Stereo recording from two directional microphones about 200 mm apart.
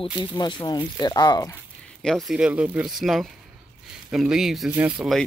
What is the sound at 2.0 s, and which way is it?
Speech, centre (ahead or behind).